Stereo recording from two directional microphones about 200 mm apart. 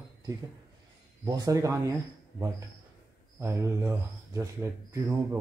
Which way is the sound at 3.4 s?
10° right (ahead or behind).